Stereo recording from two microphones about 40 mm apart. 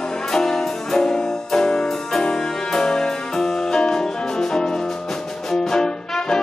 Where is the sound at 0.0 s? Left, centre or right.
Centre.